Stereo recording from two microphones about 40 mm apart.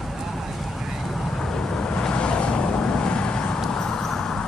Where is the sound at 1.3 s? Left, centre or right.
Centre.